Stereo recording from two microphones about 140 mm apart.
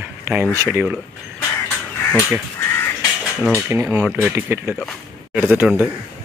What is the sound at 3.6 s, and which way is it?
Speech, 5° right (ahead or behind).